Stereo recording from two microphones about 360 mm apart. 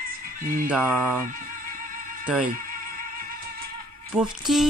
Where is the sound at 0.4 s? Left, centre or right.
Right.